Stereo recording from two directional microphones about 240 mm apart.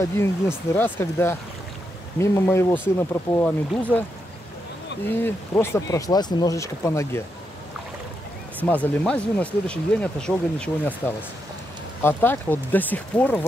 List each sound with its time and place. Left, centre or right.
0.7 s speech: centre
5.0 s speech: centre
8.6 s speech: centre